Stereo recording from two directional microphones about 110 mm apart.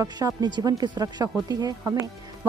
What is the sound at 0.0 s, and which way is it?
A woman's voice, 35° right (ahead or behind).